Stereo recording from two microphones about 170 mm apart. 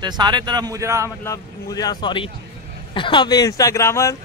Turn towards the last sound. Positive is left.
turn(degrees=15)  # may be behind; listen again after turning